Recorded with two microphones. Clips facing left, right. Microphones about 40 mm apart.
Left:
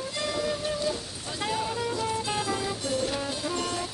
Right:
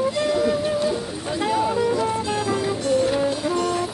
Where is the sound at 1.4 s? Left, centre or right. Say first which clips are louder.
Right 8 dB; centre.